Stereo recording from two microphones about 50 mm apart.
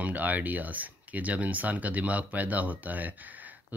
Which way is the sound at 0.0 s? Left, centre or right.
Right.